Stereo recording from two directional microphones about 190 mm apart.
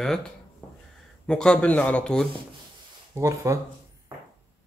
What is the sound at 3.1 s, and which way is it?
Speech, 15° right (ahead or behind).